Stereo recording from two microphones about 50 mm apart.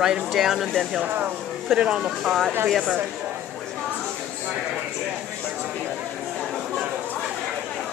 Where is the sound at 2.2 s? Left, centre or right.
Centre.